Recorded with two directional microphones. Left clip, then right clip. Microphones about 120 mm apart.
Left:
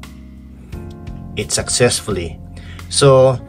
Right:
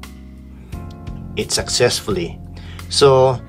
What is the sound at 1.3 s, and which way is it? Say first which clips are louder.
Speech: even; 15° right (ahead or behind).